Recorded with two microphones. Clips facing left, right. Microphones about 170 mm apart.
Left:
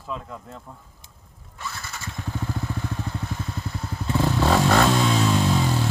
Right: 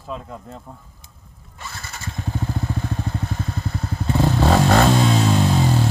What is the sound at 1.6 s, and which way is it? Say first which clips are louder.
Vehicle: left 1 dB; 40° right (ahead or behind).